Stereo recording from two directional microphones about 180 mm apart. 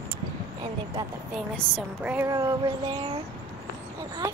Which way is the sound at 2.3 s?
20° right (ahead or behind).